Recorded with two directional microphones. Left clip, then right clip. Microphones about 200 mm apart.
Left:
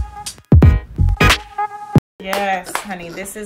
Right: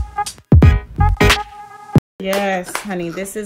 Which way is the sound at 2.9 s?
35° right (ahead or behind).